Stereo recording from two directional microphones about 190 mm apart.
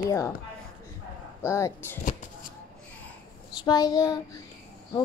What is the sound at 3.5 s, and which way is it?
Speech, 20° left (ahead or behind).